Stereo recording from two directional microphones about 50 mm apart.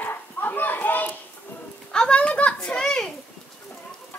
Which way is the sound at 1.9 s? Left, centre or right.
Centre.